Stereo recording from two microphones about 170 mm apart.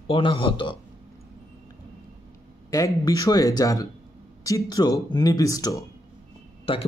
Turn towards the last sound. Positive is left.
turn(degrees=35)  # may be behind; listen again after turning